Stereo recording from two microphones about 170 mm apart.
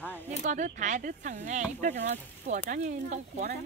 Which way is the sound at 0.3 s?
45° right (ahead or behind).